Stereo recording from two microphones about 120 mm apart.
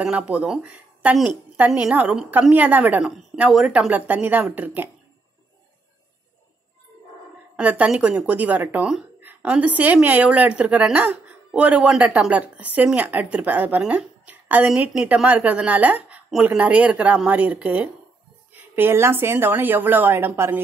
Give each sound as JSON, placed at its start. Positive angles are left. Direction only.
{"t": 0.0, "sound": "speech", "side_deg": -10}
{"t": 1.1, "sound": "a woman's voice", "side_deg": 0}
{"t": 7.5, "sound": "a woman's voice", "side_deg": -10}